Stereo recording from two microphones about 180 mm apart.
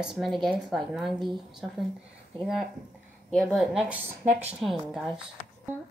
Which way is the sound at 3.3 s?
5° left (ahead or behind).